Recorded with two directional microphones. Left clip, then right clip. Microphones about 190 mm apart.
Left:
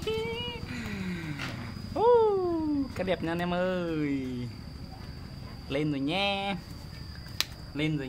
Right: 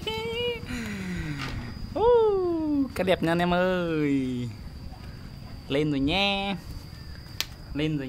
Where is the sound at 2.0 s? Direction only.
15° right (ahead or behind).